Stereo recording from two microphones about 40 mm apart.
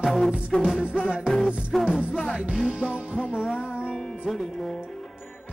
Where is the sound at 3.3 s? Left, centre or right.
Centre.